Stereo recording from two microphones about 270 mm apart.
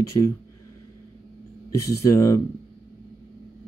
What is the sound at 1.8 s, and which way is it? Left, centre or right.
Speech, centre.